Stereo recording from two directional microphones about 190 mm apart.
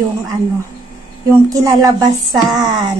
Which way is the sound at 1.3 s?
15° right (ahead or behind).